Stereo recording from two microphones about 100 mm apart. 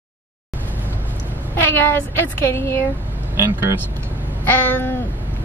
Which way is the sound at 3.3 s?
25° right (ahead or behind).